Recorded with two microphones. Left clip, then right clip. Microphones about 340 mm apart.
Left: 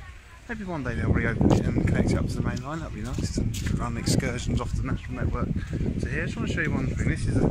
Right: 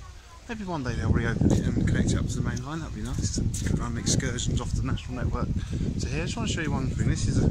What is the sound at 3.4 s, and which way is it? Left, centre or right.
Speech, left.